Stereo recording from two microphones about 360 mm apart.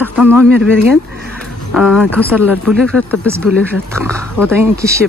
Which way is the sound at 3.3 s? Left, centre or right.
Centre.